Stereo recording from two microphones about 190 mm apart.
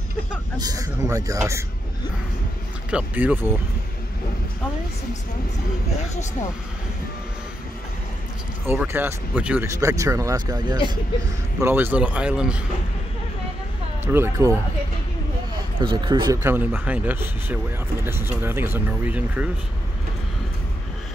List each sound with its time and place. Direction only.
0.6 s speech: 20° right (ahead or behind)
2.9 s speech: 5° right (ahead or behind)
8.6 s speech: 10° right (ahead or behind)
14.0 s speech: 10° right (ahead or behind)
15.8 s speech: 25° right (ahead or behind)
16.4 s speech: 10° right (ahead or behind)